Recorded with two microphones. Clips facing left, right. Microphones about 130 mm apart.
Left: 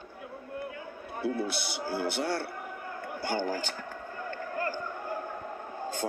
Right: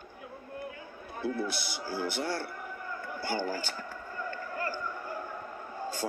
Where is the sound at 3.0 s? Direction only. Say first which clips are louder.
Left 2 dB; 55° left (ahead or behind).